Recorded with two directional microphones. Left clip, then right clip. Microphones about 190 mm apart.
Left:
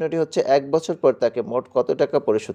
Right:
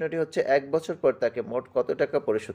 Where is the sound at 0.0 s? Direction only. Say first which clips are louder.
Left 5 dB; 25° left (ahead or behind).